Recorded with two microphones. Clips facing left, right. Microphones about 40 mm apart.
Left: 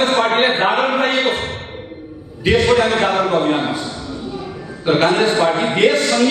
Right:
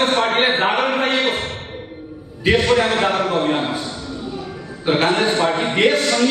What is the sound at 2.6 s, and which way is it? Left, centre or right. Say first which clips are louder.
A man's voice: left 2 dB; centre.